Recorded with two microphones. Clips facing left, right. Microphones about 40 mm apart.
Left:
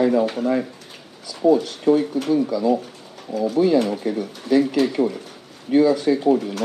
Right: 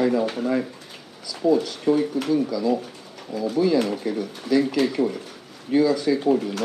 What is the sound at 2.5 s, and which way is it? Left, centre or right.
Speech, left.